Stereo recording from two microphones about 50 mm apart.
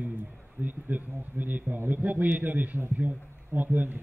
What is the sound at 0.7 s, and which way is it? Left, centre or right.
A man's voice, right.